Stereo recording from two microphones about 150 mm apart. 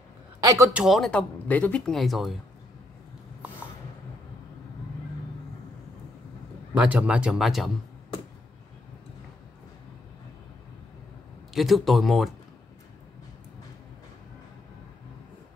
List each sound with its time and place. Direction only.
0.4 s speech: 20° right (ahead or behind)
0.7 s speech: centre (ahead or behind)
6.7 s speech: 10° right (ahead or behind)
11.5 s speech: centre (ahead or behind)